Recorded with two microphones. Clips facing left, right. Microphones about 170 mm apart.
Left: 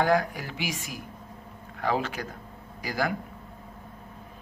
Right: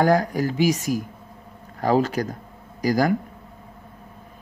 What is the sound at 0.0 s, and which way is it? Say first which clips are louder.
Speech: right 5 dB; 40° right (ahead or behind).